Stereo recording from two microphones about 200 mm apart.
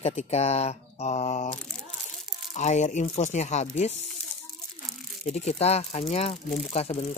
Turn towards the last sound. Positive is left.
turn(degrees=30)  # may be behind; listen again after turning